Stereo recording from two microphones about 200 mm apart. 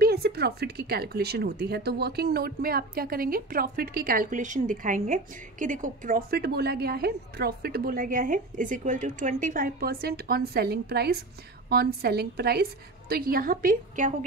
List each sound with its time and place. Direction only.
0.0 s speech: 50° right (ahead or behind)